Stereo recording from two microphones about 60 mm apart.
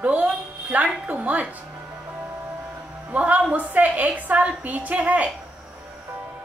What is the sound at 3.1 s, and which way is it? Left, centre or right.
A woman's voice, right.